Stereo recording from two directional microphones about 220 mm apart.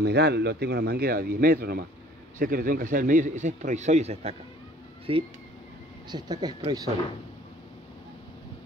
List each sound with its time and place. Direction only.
0.0 s speech: 50° right (ahead or behind); by 6.9 s 20° right (ahead or behind)